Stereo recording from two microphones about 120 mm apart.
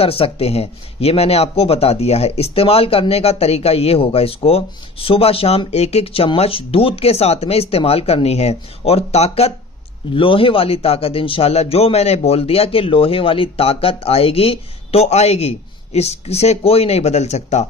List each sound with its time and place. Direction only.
0.0 s speech: 55° left (ahead or behind)
10.1 s speech: 45° left (ahead or behind); by 17.6 s 70° left (ahead or behind)